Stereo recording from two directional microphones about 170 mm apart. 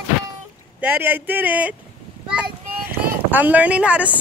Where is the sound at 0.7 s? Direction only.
10° right (ahead or behind).